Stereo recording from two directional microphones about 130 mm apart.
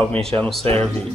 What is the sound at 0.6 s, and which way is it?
Speech, 50° right (ahead or behind).